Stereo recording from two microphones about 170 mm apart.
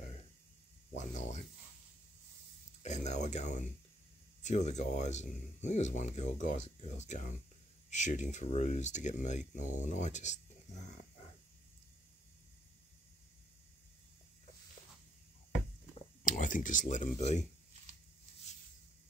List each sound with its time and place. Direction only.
0.9 s speech: 45° left (ahead or behind)
2.8 s speech: 40° left (ahead or behind)
16.3 s speech: 50° left (ahead or behind)